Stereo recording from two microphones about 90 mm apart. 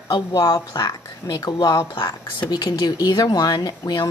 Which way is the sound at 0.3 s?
45° left (ahead or behind).